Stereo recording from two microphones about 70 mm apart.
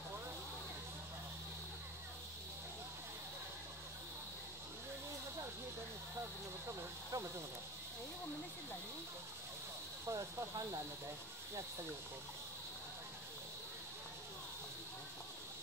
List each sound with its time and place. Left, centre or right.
7.1 s cricket: right
10.0 s snake: right